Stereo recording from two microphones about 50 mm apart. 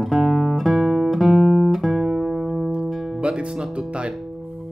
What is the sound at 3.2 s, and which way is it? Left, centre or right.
Music, centre.